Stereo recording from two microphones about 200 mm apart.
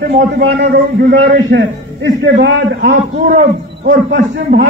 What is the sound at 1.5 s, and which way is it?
Speech, 45° right (ahead or behind).